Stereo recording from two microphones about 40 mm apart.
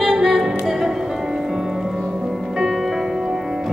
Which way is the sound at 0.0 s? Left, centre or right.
Centre.